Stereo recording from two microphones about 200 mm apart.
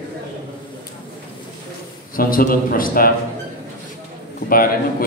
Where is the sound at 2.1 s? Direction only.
45° left (ahead or behind).